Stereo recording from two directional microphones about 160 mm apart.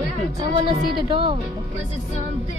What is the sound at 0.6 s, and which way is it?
Speech, 30° right (ahead or behind).